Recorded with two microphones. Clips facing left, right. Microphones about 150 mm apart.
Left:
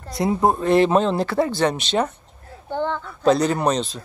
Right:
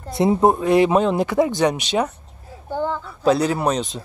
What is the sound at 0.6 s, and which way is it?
A child's voice, 10° right (ahead or behind).